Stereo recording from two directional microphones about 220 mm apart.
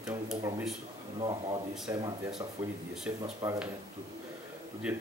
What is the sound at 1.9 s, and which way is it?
Speech, 10° right (ahead or behind).